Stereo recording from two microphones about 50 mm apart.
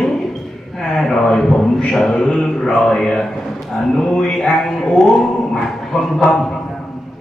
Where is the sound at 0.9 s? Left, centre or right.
Centre.